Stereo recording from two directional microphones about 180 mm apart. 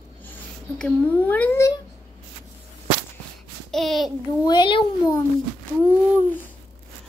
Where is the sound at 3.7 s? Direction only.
Centre (ahead or behind).